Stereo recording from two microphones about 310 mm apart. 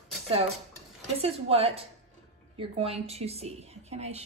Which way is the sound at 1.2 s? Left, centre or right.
Centre.